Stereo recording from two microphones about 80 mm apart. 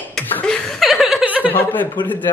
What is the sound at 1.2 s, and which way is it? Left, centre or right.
Chuckle, centre.